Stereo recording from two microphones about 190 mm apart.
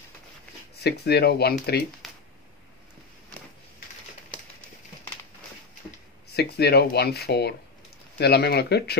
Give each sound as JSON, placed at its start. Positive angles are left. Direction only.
{"t": 0.8, "sound": "speech", "side_deg": 60}
{"t": 2.0, "sound": "a sound", "side_deg": 0}
{"t": 6.3, "sound": "speech", "side_deg": 55}